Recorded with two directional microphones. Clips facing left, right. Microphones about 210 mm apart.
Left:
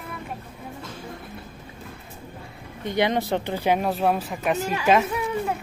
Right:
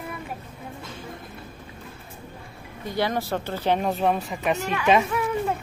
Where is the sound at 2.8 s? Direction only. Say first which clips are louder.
Left 3 dB; 20° left (ahead or behind).